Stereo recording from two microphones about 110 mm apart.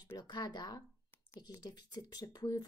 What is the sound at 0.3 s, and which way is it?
Speech, 40° left (ahead or behind).